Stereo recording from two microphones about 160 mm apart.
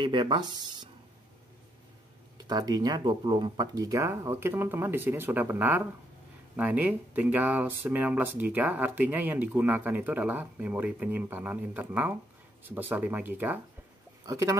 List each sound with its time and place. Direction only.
0.0 s speech: 30° right (ahead or behind)
2.3 s speech: 25° right (ahead or behind)